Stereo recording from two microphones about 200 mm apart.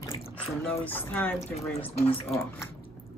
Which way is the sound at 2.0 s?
30° left (ahead or behind).